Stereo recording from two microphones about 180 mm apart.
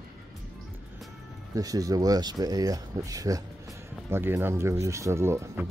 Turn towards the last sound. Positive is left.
turn(degrees=-15)  # may be behind; listen again after turning